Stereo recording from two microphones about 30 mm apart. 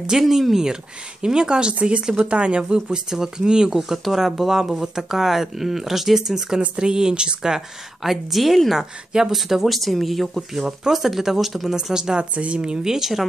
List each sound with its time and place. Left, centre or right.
0.3 s speech: centre
1.2 s speech: right
1.8 s speech: right
3.1 s speech: right
4.0 s speech: centre
6.8 s speech: right
7.5 s a woman's voice: centre
8.7 s speech: centre
9.7 s a woman's voice: centre
10.9 s speech: centre
11.7 s speech: right
12.4 s speech: right
12.8 s speech: centre